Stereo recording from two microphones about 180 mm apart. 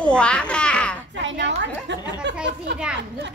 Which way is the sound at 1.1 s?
80° right.